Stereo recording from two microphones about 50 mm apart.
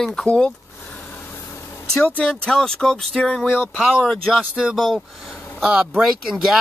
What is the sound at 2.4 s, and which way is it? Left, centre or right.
Speech, centre.